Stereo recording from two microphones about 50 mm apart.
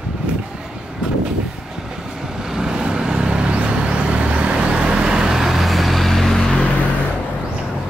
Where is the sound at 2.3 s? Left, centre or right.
Centre.